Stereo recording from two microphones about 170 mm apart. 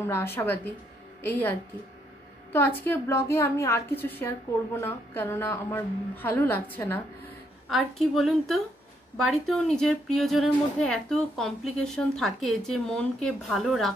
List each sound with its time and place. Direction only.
0.1 s a woman's voice: 15° left (ahead or behind)
7.7 s a woman's voice: centre (ahead or behind)